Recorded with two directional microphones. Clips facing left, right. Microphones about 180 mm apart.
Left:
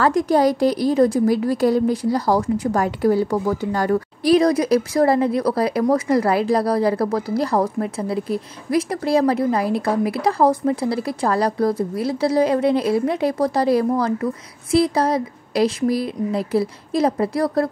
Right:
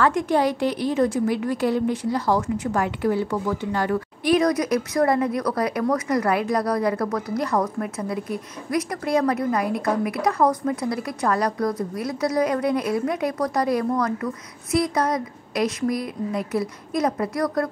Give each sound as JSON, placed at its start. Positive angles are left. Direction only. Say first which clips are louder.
{"t": 0.0, "sound": "a woman's voice", "louder": "left 4 dB", "side_deg": 35}